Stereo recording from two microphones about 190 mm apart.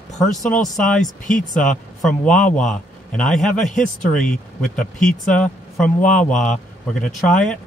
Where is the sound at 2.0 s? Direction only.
5° left (ahead or behind).